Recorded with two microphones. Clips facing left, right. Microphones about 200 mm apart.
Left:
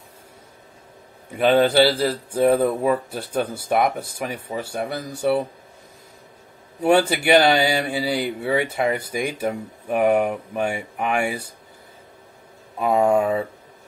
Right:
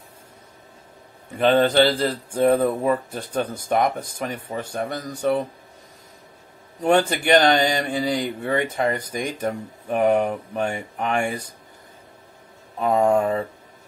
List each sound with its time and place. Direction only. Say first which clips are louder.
1.4 s speech: left 1 dB; 10° left (ahead or behind)
6.8 s speech: left 1 dB; 10° left (ahead or behind)
12.7 s a sound: left 1 dB; 10° left (ahead or behind)